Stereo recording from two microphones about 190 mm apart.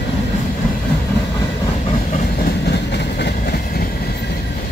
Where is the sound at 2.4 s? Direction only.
60° left (ahead or behind).